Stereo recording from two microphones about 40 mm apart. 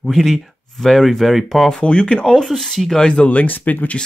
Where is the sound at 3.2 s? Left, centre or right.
Left.